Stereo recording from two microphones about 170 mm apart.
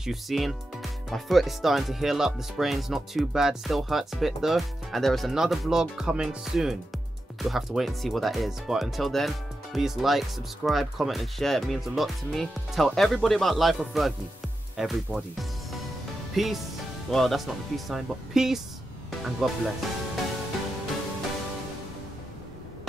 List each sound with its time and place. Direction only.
0.0 s speech: centre (ahead or behind)